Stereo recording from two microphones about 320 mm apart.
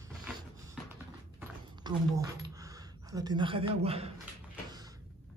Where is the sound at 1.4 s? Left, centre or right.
Centre.